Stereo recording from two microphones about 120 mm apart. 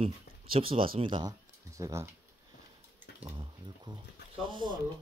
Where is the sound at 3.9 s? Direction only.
40° right (ahead or behind).